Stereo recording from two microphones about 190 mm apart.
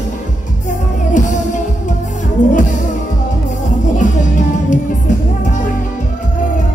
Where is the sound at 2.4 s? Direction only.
40° left (ahead or behind).